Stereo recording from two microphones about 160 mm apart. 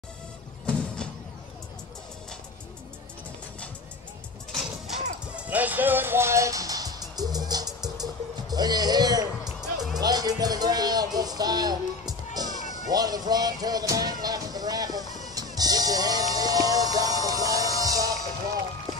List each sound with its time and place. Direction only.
4.5 s music: centre (ahead or behind); by 9.3 s 25° right (ahead or behind)
9.4 s music: centre (ahead or behind)
9.9 s music: 25° right (ahead or behind)